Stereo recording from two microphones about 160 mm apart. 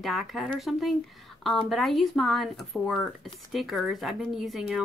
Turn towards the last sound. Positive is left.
turn(degrees=0)  # may be behind; listen again after turning